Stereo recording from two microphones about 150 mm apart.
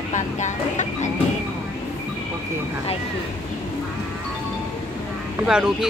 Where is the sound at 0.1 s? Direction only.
55° left (ahead or behind).